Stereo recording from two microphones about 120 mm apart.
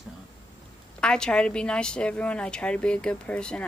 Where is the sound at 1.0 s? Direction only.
5° left (ahead or behind).